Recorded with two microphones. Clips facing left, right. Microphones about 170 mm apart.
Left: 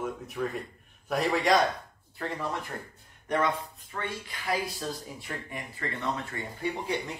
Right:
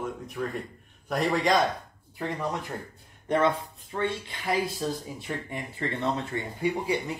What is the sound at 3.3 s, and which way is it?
Speech, 25° right (ahead or behind).